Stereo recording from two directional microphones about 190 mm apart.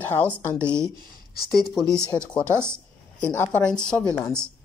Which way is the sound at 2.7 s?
10° left (ahead or behind).